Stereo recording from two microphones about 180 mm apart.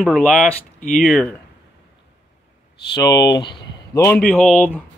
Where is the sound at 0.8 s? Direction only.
45° left (ahead or behind).